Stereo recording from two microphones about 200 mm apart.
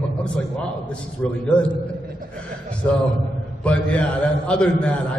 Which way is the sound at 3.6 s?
5° left (ahead or behind).